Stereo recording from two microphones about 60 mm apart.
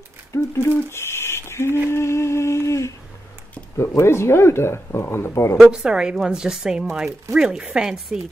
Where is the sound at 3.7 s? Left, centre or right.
Left.